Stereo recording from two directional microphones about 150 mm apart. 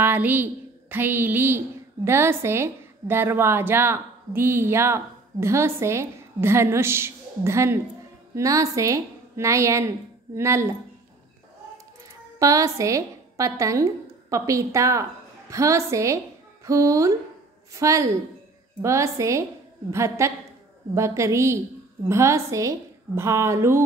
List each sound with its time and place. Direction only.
0.0 s a woman's voice: 15° right (ahead or behind)
12.4 s a woman's voice: 20° right (ahead or behind)